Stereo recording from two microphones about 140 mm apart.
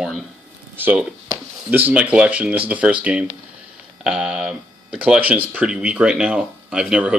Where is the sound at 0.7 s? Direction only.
15° right (ahead or behind).